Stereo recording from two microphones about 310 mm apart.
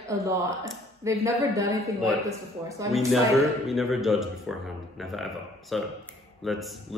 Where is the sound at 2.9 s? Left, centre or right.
Centre.